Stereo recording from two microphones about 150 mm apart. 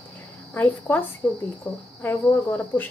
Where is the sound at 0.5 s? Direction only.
10° left (ahead or behind).